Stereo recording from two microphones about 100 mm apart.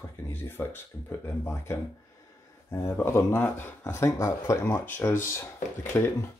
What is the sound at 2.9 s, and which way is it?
Speech, 25° left (ahead or behind).